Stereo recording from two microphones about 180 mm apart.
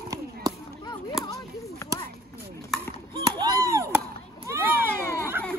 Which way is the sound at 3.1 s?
20° right (ahead or behind).